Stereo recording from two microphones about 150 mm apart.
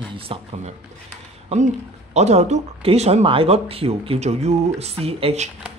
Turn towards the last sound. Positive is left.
turn(degrees=-40)  # may be behind; listen again after turning